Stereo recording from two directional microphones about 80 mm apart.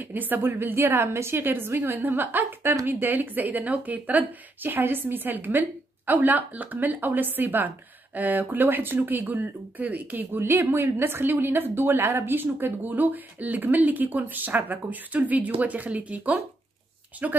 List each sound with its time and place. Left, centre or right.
0.0 s a woman's voice: right